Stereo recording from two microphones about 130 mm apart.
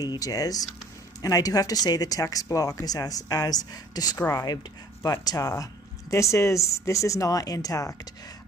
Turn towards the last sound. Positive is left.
turn(degrees=25)  # may be behind; listen again after turning